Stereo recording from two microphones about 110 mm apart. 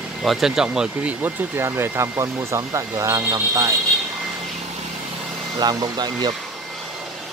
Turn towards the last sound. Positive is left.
turn(degrees=-40)  # may be behind; listen again after turning